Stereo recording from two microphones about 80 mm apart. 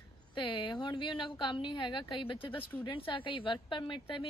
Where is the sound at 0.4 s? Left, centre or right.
Left.